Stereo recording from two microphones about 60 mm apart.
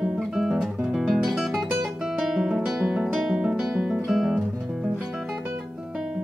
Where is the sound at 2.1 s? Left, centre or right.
Centre.